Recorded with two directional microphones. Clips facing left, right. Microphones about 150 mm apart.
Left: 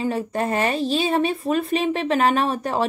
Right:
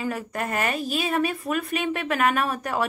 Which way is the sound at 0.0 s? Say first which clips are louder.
Left 5 dB; 30° left (ahead or behind).